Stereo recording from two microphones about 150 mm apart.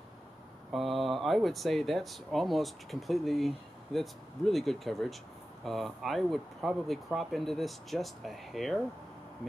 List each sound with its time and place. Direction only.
0.7 s speech: centre (ahead or behind)